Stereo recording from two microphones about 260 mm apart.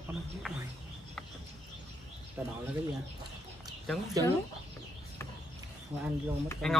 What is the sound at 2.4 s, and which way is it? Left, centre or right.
Speech, centre.